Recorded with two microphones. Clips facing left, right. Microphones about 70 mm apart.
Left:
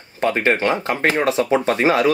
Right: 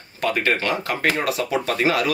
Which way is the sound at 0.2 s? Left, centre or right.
Left.